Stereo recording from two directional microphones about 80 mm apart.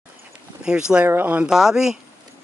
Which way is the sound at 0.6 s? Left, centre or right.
Centre.